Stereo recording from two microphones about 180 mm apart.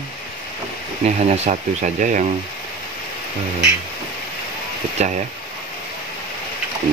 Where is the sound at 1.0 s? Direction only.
40° right (ahead or behind).